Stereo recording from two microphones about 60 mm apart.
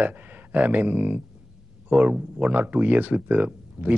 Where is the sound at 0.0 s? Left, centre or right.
Right.